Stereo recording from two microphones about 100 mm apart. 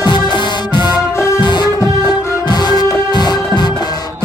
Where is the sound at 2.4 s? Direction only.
45° left (ahead or behind).